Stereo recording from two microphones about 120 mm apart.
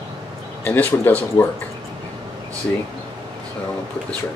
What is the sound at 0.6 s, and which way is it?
Speech, 15° left (ahead or behind).